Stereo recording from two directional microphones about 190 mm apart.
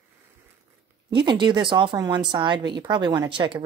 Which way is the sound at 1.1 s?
25° right (ahead or behind).